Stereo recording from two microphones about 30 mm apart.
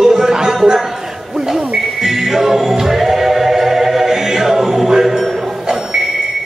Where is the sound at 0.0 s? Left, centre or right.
Centre.